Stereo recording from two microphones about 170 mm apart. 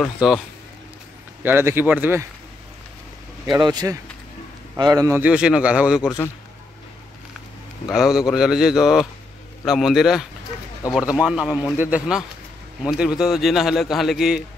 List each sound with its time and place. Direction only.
0.0 s a man's voice: 5° right (ahead or behind)
1.4 s a man's voice: 10° right (ahead or behind)
3.4 s a man's voice: 25° right (ahead or behind); by 6.1 s 5° right (ahead or behind)
7.9 s a man's voice: 5° right (ahead or behind)